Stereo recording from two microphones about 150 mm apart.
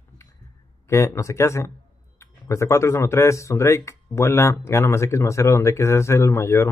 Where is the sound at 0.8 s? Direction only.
20° left (ahead or behind).